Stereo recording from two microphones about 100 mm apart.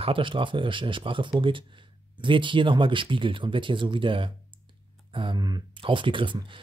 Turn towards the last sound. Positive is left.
turn(degrees=-55)  # may be behind; listen again after turning